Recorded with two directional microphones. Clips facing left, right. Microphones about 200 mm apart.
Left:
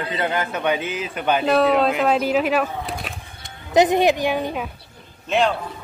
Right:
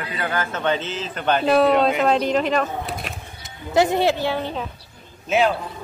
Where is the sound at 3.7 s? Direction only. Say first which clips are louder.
Left 2 dB; 15° left (ahead or behind).